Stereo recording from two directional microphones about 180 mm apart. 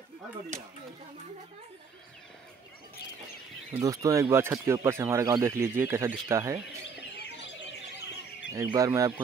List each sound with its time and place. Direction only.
0.5 s speech: 40° right (ahead or behind)
3.8 s speech: 15° right (ahead or behind)
7.2 s bird: 75° left (ahead or behind)
8.5 s speech: 15° right (ahead or behind)